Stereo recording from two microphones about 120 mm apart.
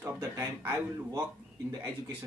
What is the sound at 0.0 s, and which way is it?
Speech, 25° right (ahead or behind).